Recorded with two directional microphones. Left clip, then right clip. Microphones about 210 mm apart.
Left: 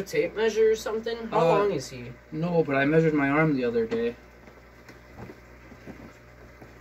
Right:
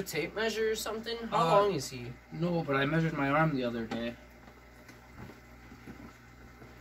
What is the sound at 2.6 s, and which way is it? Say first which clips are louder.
Speech: left 7 dB; 10° right (ahead or behind).